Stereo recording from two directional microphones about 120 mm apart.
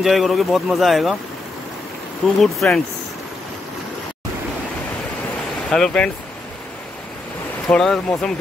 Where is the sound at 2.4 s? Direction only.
Centre (ahead or behind).